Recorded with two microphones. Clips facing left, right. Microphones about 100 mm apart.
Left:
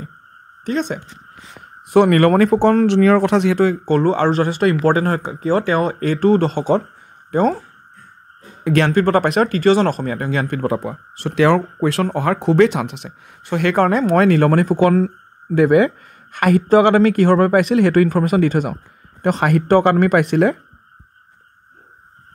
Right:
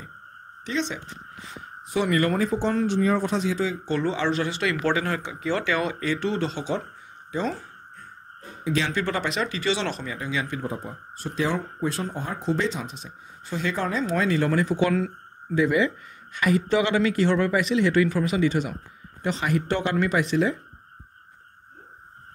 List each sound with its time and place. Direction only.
0.7 s speech: 50° left (ahead or behind)
1.6 s speech: 60° left (ahead or behind)
8.6 s speech: 60° left (ahead or behind)
15.0 s a sound: 40° left (ahead or behind)
15.5 s speech: 55° left (ahead or behind)